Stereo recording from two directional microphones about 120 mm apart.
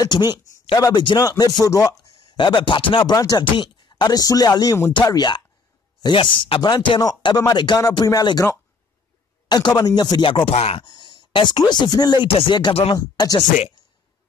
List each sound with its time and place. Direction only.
0.0 s speech: 35° left (ahead or behind)
2.3 s speech: 40° left (ahead or behind)
9.5 s speech: 35° left (ahead or behind); by 10.8 s 60° left (ahead or behind)
10.8 s speech: 40° left (ahead or behind)
12.3 s speech: 45° left (ahead or behind)